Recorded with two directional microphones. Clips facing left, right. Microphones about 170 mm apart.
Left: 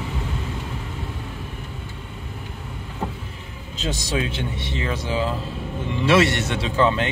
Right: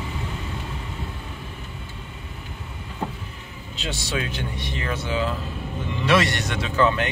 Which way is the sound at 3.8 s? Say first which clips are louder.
Left 3 dB; 45° left (ahead or behind).